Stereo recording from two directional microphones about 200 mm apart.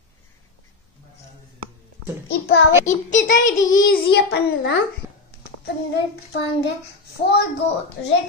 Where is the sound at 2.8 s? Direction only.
40° left (ahead or behind).